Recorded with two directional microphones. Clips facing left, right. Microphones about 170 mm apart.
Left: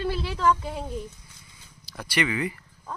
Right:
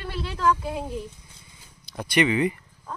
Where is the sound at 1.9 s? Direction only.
20° right (ahead or behind).